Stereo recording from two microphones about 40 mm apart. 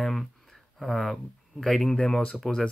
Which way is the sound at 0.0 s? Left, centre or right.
Centre.